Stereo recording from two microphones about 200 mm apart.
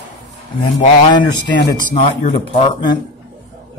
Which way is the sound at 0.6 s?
25° left (ahead or behind).